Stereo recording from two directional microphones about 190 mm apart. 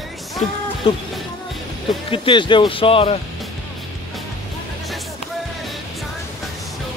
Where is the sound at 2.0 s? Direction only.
25° left (ahead or behind).